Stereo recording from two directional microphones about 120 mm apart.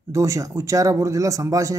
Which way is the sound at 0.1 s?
25° right (ahead or behind).